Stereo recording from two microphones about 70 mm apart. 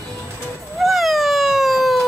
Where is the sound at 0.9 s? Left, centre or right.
Centre.